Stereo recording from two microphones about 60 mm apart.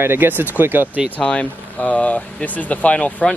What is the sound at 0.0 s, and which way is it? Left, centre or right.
Speech, right.